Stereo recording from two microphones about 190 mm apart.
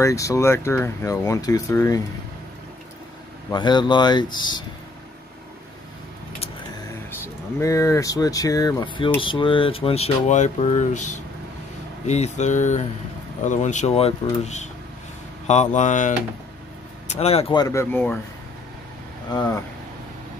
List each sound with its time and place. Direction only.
0.0 s speech: 15° left (ahead or behind)
3.5 s speech: 25° left (ahead or behind)
6.9 s speech: 15° left (ahead or behind)
19.3 s speech: 20° left (ahead or behind)